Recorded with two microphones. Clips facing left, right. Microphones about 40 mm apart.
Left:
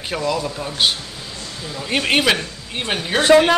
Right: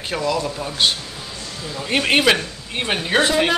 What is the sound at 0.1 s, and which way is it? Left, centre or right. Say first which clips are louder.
A man's voice: even; centre.